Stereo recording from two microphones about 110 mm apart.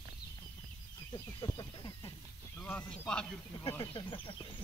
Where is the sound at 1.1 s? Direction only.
40° left (ahead or behind).